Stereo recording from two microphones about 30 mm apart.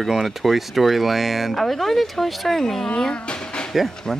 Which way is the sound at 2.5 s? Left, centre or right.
Centre.